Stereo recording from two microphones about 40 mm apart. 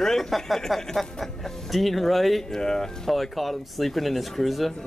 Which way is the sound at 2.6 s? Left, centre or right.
Centre.